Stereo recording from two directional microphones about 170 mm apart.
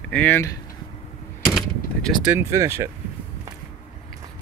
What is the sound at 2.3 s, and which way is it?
Speech, 20° right (ahead or behind).